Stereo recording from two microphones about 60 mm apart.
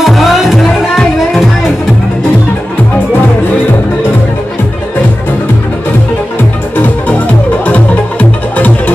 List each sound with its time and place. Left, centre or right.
0.0 s music: centre
7.6 s music: left